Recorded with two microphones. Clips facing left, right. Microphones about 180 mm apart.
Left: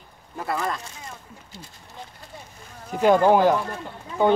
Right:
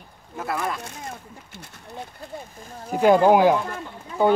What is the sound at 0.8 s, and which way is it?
Speech, 60° right (ahead or behind).